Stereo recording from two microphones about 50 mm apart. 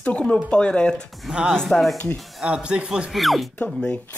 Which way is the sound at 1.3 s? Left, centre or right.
Centre.